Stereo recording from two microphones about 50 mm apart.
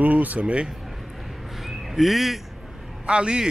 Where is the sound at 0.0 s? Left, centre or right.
Right.